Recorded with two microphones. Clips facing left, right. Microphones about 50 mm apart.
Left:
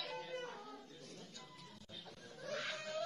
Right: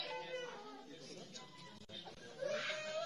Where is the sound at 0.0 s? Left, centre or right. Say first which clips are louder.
Even; centre.